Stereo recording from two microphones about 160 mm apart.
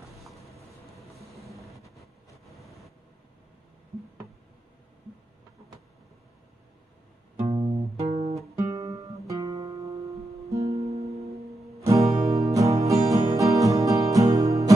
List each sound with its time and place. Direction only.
0.0 s vehicle: centre (ahead or behind)
7.4 s music: 40° right (ahead or behind)
8.7 s music: 20° right (ahead or behind)
10.6 s music: 40° right (ahead or behind)
11.8 s music: 20° right (ahead or behind)